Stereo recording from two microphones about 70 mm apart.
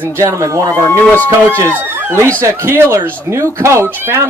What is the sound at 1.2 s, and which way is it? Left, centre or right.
Speech, right.